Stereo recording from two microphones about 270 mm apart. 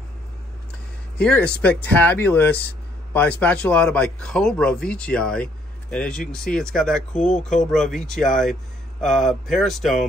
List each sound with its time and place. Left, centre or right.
1.1 s speech: centre